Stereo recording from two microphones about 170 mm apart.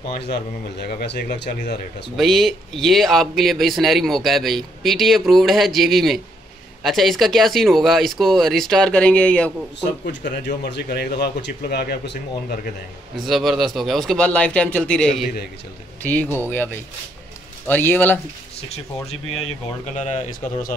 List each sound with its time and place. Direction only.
0.1 s speech: 75° left (ahead or behind)
2.1 s speech: centre (ahead or behind)
10.2 s speech: 80° left
13.2 s speech: centre (ahead or behind)
18.7 s speech: 35° left (ahead or behind)